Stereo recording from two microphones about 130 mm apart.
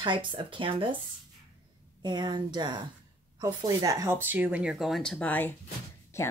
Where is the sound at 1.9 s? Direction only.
35° right (ahead or behind); by 6.3 s 20° left (ahead or behind).